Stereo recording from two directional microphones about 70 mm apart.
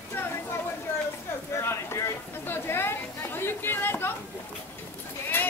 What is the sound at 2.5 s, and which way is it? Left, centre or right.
Chatter, left.